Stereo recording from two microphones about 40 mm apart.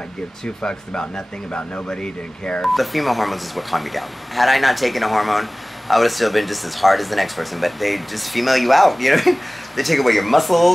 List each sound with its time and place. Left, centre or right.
0.7 s speech: centre
2.6 s speech: centre